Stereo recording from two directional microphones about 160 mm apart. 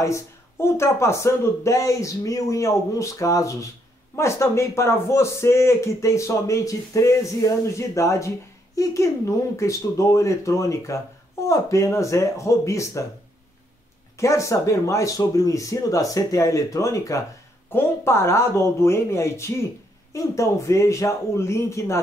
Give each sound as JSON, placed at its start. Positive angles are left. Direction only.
{"t": 0.0, "sound": "speech", "side_deg": 15}
{"t": 14.1, "sound": "speech", "side_deg": 20}